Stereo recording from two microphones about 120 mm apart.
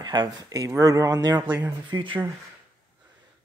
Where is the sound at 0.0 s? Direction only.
35° right (ahead or behind).